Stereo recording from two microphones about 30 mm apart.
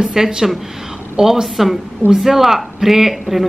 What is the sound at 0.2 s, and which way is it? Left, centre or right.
Speech, centre.